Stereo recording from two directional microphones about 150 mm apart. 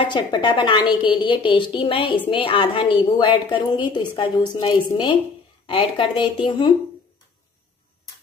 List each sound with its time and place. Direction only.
0.0 s a woman's voice: 30° left (ahead or behind)